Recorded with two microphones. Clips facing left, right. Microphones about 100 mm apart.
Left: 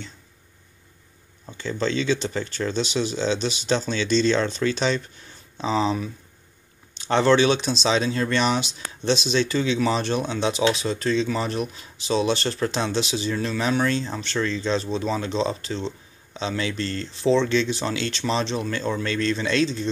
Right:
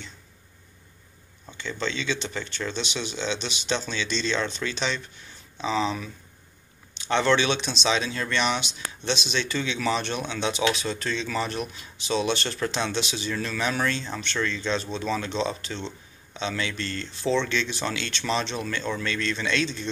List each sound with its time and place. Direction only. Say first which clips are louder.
1.6 s speech: left 6 dB; 40° left (ahead or behind)